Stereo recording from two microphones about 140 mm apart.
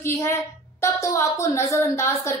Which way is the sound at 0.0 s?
20° left (ahead or behind).